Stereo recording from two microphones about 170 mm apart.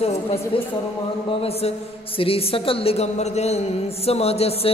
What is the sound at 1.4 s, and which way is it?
A man's voice, 35° left (ahead or behind).